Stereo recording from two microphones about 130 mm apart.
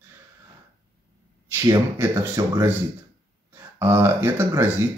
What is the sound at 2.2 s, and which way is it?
Speech, 20° right (ahead or behind).